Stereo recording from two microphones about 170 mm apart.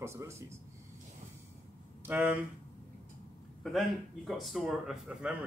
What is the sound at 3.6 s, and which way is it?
Speech, centre (ahead or behind).